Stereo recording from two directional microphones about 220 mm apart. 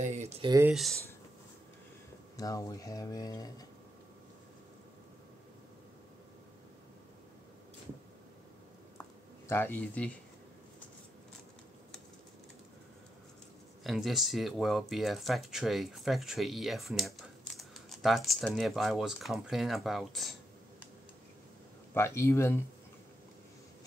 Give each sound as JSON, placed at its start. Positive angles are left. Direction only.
{"t": 0.0, "sound": "a sound", "side_deg": -30}
{"t": 0.5, "sound": "speech", "side_deg": -10}
{"t": 2.3, "sound": "speech", "side_deg": 15}
{"t": 9.5, "sound": "speech", "side_deg": 10}
{"t": 13.8, "sound": "speech", "side_deg": 0}
{"t": 21.9, "sound": "speech", "side_deg": 10}